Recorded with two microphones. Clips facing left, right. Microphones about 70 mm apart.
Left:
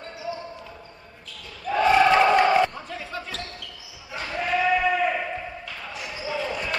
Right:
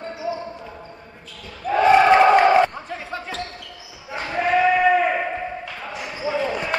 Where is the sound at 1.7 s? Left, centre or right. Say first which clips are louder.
Right 4 dB; right.